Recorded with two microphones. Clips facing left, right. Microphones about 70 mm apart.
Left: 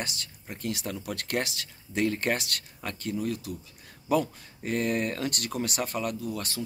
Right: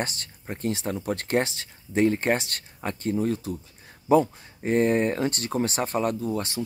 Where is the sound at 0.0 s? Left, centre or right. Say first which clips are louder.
Right 5 dB; right.